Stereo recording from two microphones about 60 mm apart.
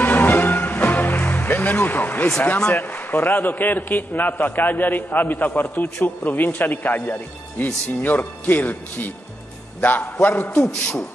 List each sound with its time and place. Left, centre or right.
0.0 s music: left
2.7 s a man's voice: left
10.7 s speech: centre